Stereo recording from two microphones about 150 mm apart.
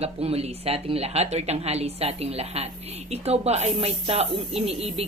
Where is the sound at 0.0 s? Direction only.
45° right (ahead or behind).